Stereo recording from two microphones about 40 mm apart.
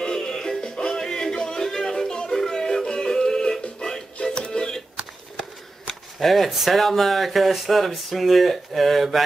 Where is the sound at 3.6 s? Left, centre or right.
Left.